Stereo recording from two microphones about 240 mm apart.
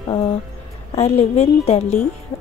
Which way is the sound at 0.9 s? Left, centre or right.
Left.